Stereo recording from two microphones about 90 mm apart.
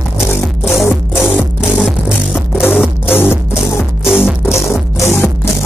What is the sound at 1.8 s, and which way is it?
Music, 5° right (ahead or behind).